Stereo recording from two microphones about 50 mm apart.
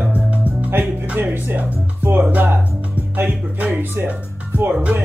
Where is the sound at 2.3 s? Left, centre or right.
Right.